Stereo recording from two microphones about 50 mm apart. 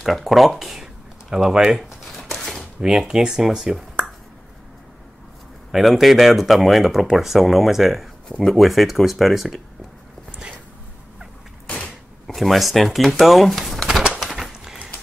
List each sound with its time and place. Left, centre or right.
0.0 s speech: centre
1.8 s shuffling cards: centre
2.8 s speech: centre
5.7 s speech: centre
8.5 s speech: centre
11.6 s creak: left
12.4 s speech: centre
14.1 s a sound: centre